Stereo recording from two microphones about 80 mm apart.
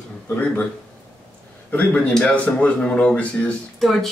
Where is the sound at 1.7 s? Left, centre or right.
Centre.